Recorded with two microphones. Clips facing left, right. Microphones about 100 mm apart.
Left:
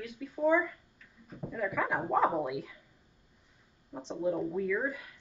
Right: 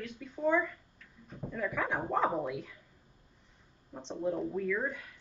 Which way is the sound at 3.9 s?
10° left (ahead or behind).